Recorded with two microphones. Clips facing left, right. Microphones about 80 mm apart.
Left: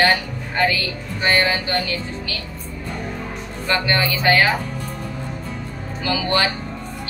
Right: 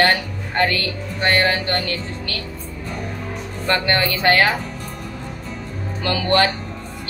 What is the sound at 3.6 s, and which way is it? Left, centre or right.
Speech, right.